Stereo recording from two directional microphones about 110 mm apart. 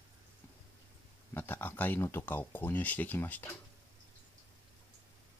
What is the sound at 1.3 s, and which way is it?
Speech, 20° left (ahead or behind).